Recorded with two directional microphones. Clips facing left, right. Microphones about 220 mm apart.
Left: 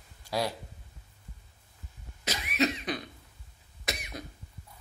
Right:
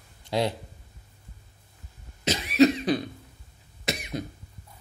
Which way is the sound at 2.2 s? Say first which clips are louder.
Right 10 dB; 25° right (ahead or behind).